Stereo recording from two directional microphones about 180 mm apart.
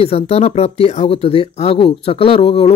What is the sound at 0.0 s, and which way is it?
Speech, 35° left (ahead or behind).